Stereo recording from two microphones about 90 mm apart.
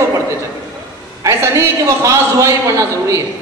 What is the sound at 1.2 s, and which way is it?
A man's voice, 35° right (ahead or behind).